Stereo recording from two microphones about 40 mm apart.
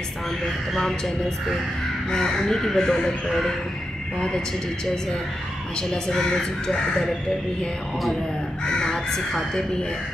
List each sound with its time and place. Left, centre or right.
0.7 s speech: centre
5.8 s speech: centre
8.6 s crow: centre